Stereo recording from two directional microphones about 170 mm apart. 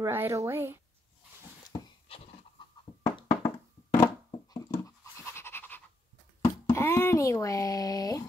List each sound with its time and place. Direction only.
0.0 s speech: 15° right (ahead or behind)
1.7 s a sound: 35° left (ahead or behind); by 5.8 s 10° left (ahead or behind)
6.4 s speech: 15° left (ahead or behind)